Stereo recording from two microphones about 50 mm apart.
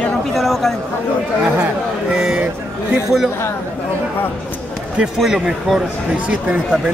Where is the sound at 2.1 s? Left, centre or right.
Centre.